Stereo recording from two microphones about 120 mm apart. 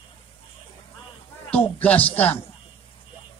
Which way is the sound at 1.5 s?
15° left (ahead or behind).